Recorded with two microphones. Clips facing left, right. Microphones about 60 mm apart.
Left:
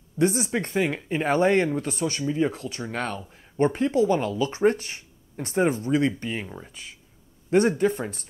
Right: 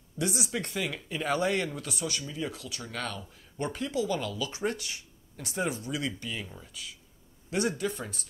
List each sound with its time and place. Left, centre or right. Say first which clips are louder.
0.2 s speech: left 9 dB; left